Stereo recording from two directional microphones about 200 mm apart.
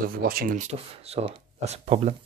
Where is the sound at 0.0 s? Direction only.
45° right (ahead or behind).